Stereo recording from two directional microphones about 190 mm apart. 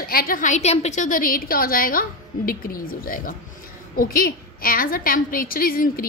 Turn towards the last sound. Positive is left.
turn(degrees=50)  # may be behind; listen again after turning